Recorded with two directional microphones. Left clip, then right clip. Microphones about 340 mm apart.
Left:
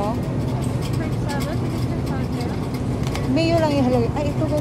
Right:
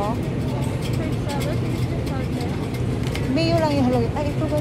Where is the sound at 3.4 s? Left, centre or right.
Centre.